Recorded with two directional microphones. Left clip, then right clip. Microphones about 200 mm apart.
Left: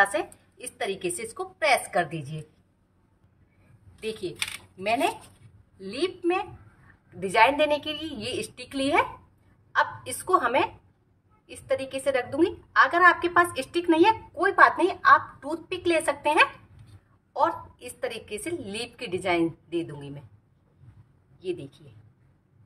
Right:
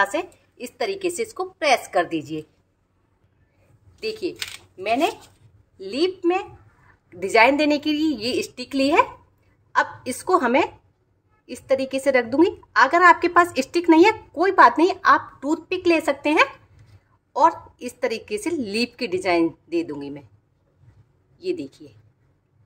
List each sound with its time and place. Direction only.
0.1 s a woman's voice: 30° right (ahead or behind)
5.8 s a woman's voice: 25° right (ahead or behind)
21.4 s a woman's voice: 40° right (ahead or behind)